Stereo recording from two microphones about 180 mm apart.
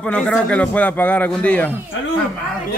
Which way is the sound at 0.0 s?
5° left (ahead or behind).